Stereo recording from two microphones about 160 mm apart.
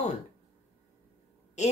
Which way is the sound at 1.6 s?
45° left (ahead or behind).